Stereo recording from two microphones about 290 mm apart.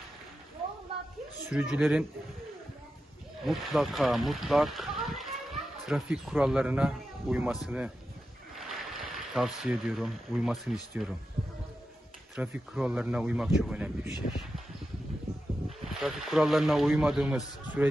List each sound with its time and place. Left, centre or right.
1.5 s speech: centre
3.4 s speech: centre
12.4 s speech: centre
15.8 s speech: centre